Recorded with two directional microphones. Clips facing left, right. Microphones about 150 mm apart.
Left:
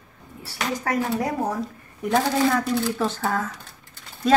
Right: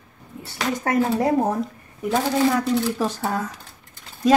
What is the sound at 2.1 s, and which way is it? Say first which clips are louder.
Speech: even; centre (ahead or behind).